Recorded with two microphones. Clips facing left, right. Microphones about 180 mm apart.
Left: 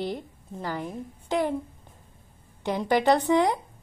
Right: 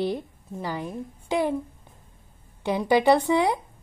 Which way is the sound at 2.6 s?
10° right (ahead or behind).